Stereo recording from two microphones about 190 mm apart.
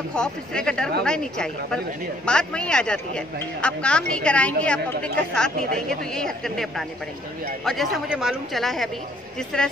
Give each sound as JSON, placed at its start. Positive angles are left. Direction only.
{"t": 0.1, "sound": "a woman's voice", "side_deg": 5}